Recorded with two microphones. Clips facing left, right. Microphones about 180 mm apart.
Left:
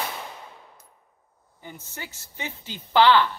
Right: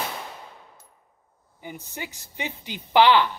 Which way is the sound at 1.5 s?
15° right (ahead or behind).